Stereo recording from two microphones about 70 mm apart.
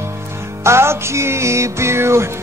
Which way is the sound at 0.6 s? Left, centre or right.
Right.